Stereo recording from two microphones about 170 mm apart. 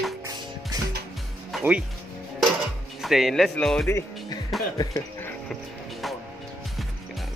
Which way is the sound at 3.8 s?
15° left (ahead or behind).